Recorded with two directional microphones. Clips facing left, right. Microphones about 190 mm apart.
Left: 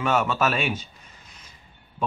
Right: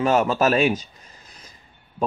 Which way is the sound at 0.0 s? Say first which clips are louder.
Right 4 dB; 35° right (ahead or behind).